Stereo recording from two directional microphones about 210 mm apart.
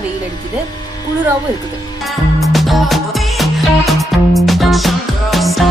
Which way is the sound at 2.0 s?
Centre (ahead or behind).